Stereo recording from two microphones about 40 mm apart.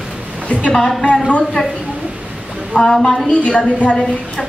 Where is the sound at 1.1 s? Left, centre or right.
Left.